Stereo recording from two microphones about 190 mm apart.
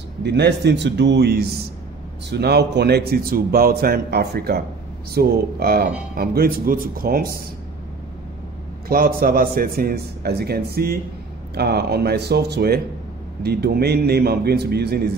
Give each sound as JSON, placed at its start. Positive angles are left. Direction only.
{"t": 0.2, "sound": "a man's voice", "side_deg": -60}
{"t": 8.8, "sound": "a man's voice", "side_deg": -50}